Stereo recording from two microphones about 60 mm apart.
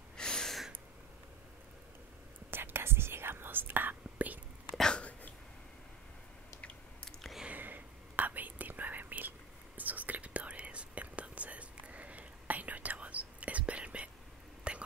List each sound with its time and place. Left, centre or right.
0.2 s a sound: centre
2.5 s whispering: right
4.9 s hiccup: left
7.4 s whispering: right